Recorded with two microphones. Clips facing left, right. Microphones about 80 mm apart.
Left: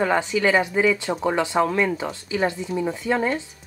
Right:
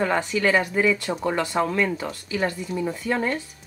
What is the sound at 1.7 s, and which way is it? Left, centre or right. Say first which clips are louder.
Speech: left 2 dB; centre.